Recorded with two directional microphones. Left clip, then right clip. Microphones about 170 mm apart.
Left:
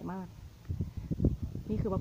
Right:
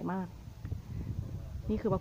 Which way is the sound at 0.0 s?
Centre (ahead or behind).